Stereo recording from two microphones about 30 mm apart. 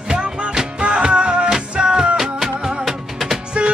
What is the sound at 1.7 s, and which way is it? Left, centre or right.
Music, right.